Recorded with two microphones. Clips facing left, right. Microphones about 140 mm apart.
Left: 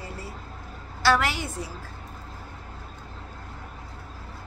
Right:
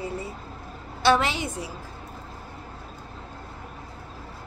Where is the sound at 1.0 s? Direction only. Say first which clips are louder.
Right 2 dB; 20° right (ahead or behind).